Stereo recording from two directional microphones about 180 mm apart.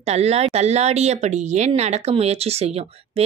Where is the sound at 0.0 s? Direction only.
35° right (ahead or behind).